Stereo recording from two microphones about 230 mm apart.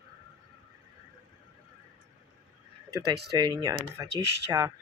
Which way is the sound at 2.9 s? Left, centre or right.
Centre.